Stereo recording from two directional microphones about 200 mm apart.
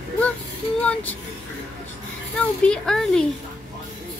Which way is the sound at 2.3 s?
5° left (ahead or behind).